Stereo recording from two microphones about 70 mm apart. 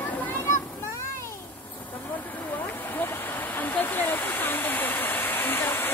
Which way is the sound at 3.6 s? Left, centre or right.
Left.